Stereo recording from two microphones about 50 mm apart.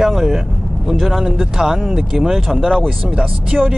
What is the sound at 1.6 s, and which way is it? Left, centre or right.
Speech, centre.